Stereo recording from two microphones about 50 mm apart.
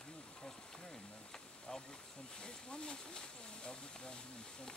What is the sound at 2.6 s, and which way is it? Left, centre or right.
Speech, centre.